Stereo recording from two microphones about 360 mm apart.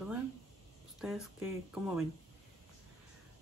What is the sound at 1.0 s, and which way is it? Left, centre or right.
Speech, centre.